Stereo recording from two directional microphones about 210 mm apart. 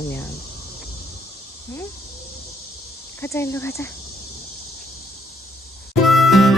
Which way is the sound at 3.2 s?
15° left (ahead or behind).